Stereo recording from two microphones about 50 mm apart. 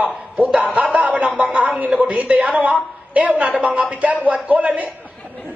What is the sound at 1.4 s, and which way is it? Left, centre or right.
A woman's voice, right.